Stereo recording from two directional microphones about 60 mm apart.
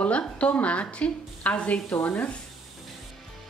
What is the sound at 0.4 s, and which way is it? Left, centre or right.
A woman's voice, left.